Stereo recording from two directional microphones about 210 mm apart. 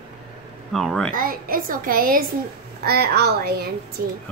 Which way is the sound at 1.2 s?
45° right (ahead or behind).